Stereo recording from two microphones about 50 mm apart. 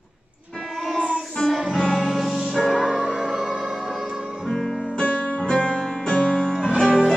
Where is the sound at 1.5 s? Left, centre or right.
Centre.